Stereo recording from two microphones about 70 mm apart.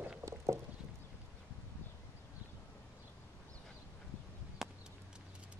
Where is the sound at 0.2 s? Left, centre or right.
Right.